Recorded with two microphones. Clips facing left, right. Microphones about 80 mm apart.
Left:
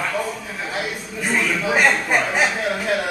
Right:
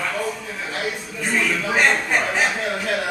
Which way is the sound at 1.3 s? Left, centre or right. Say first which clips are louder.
Left 1 dB; centre.